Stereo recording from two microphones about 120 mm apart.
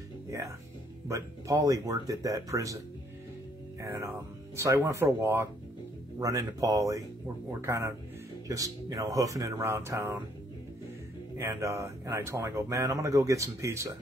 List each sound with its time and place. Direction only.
1.0 s speech: 25° right (ahead or behind)
3.8 s speech: 25° right (ahead or behind)
11.3 s speech: 25° right (ahead or behind)